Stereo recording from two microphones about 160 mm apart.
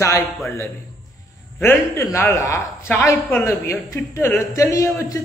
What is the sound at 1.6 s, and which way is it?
A man's voice, 15° left (ahead or behind).